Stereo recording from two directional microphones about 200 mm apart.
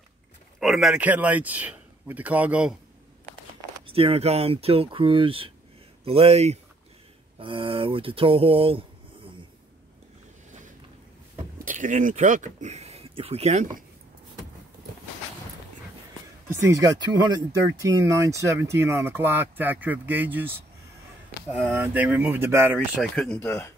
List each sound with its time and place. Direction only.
0.6 s speech: centre (ahead or behind)
3.7 s speech: 30° right (ahead or behind)
11.6 s speech: 40° right (ahead or behind)
16.5 s speech: 15° right (ahead or behind)
22.9 s speech: centre (ahead or behind)